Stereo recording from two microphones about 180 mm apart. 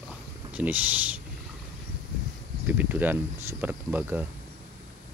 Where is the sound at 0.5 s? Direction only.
10° right (ahead or behind).